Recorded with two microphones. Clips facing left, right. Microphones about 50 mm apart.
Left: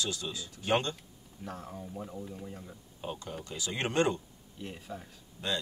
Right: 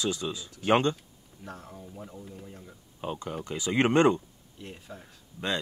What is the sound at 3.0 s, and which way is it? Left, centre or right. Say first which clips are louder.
Speech: right 5 dB; right.